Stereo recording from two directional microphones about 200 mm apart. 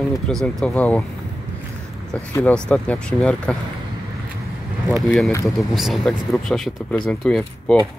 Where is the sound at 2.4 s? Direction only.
5° left (ahead or behind).